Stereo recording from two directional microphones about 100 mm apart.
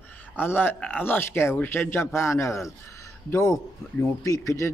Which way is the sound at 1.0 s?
25° left (ahead or behind).